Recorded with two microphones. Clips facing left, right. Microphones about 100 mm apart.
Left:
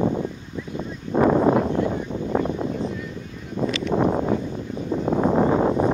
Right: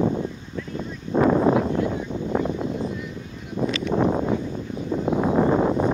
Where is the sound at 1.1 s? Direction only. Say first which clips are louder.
Left 1 dB; 30° left (ahead or behind).